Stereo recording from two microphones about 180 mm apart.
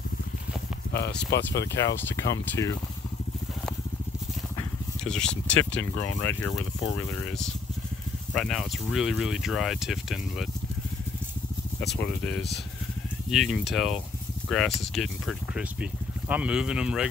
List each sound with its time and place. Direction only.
1.3 s speech: 70° left (ahead or behind)
2.3 s speech: 15° left (ahead or behind)
5.0 s speech: 5° left (ahead or behind)
12.2 s speech: 5° left (ahead or behind)